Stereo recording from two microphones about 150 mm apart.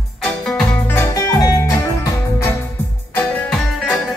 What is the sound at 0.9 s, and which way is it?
Music, 20° left (ahead or behind).